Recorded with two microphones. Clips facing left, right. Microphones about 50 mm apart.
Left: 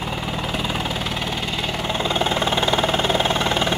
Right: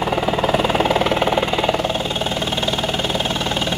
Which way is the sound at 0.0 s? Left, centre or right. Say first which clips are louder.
Right 8 dB; right.